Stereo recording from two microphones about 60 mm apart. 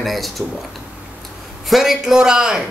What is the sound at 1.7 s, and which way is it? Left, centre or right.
Speech, centre.